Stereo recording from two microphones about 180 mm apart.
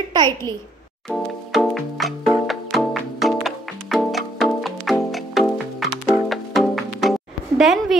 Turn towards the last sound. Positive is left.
turn(degrees=0)  # may be behind; listen again after turning